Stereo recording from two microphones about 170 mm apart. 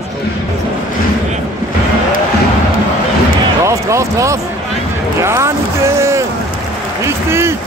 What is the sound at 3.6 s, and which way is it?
Basketball bounce, 15° right (ahead or behind).